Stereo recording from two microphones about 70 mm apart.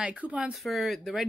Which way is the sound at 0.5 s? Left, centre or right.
Centre.